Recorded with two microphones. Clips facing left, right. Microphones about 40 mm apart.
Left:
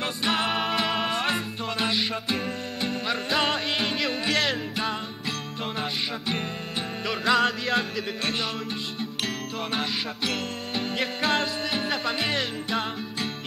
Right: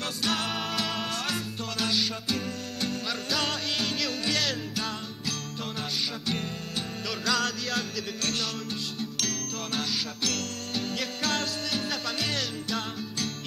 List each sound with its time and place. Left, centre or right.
0.2 s music: left
7.1 s music: left
9.8 s music: left